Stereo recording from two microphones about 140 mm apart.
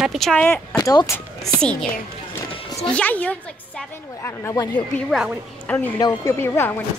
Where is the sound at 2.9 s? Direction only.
10° left (ahead or behind).